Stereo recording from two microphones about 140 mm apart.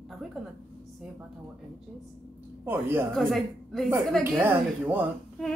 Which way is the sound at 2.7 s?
15° right (ahead or behind).